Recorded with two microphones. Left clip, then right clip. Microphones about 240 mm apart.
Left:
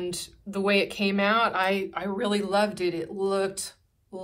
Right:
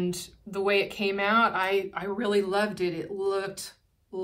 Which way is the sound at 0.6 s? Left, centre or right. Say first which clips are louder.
Left 1 dB; left.